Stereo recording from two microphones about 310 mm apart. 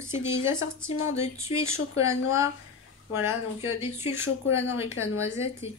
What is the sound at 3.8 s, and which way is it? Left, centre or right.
Speech, centre.